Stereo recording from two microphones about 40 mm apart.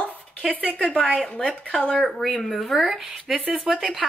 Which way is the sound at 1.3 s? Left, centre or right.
Left.